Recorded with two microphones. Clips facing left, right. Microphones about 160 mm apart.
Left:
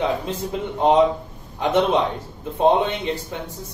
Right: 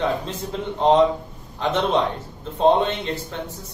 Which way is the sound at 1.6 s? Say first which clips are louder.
Left 2 dB; 10° left (ahead or behind).